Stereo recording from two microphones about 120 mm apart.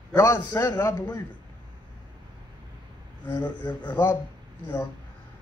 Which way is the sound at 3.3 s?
40° left (ahead or behind).